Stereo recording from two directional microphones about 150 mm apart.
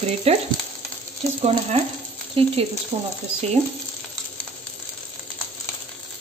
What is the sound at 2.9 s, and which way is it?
Speech, 45° right (ahead or behind).